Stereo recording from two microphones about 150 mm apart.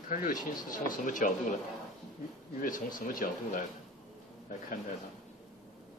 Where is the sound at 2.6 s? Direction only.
65° left (ahead or behind).